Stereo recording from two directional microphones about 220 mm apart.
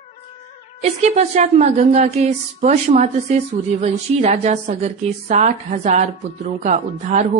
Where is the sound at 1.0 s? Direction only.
30° right (ahead or behind).